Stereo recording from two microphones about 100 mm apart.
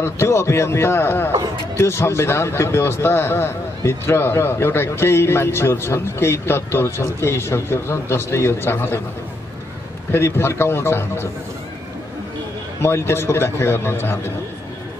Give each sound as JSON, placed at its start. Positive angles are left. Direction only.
{"t": 0.0, "sound": "a man's voice", "side_deg": 25}
{"t": 10.1, "sound": "a man's voice", "side_deg": 25}
{"t": 12.8, "sound": "a man's voice", "side_deg": 25}